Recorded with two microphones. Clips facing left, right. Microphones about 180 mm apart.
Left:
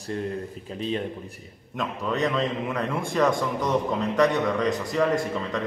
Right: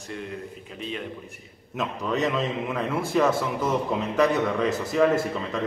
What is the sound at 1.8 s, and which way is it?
A man's voice, centre (ahead or behind).